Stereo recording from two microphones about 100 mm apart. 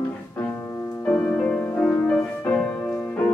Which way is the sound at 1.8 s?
5° left (ahead or behind).